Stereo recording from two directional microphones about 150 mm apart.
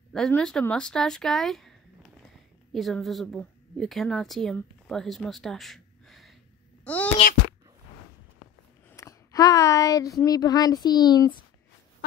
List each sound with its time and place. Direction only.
0.1 s speech: 5° left (ahead or behind)
2.7 s a woman's voice: centre (ahead or behind)
6.8 s a sound: 10° left (ahead or behind)
8.9 s speech: 25° left (ahead or behind)